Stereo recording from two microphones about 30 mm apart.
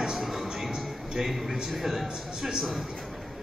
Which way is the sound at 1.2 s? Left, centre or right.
Centre.